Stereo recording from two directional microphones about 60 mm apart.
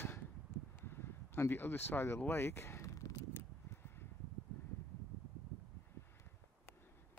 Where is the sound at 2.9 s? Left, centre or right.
Left.